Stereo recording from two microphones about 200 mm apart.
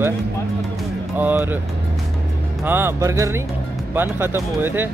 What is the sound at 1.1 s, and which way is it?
Speech, 10° right (ahead or behind).